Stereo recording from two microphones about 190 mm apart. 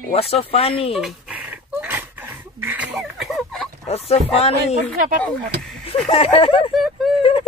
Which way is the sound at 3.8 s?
35° left (ahead or behind).